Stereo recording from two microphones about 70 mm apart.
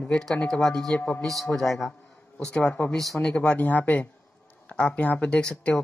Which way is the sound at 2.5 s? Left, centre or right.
Centre.